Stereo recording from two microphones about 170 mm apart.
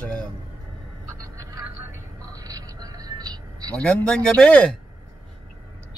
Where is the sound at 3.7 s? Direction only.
5° left (ahead or behind).